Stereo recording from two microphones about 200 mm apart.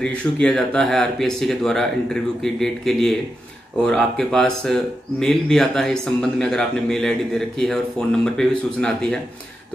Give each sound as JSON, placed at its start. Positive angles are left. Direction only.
{"t": 0.0, "sound": "speech", "side_deg": 5}